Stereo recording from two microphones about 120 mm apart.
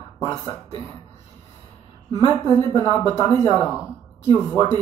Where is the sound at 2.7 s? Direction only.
25° left (ahead or behind).